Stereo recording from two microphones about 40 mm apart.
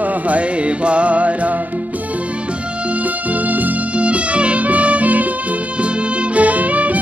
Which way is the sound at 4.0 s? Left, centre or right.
Right.